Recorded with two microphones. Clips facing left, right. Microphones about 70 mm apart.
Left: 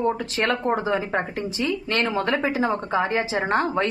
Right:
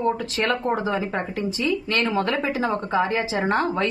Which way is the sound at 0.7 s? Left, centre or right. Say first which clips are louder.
Left 1 dB; left.